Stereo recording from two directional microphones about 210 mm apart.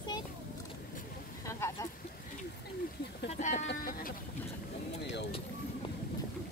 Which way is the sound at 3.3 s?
35° left (ahead or behind).